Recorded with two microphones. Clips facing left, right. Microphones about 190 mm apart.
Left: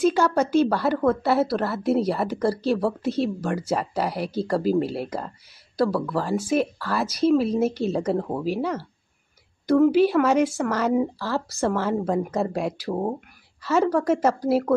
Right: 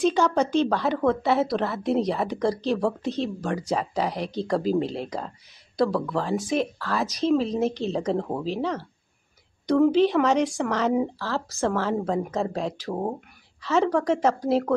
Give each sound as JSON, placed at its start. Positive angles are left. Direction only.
{"t": 0.0, "sound": "a woman's voice", "side_deg": 0}